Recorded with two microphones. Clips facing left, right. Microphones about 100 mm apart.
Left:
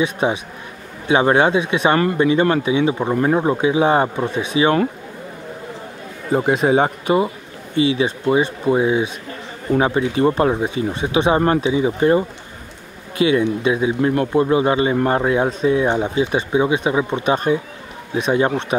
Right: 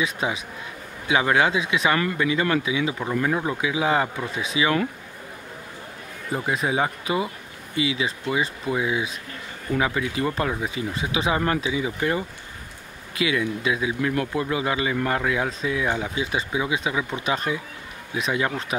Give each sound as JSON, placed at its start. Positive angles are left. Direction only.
{"t": 0.0, "sound": "speech", "side_deg": 25}
{"t": 6.7, "sound": "speech", "side_deg": 35}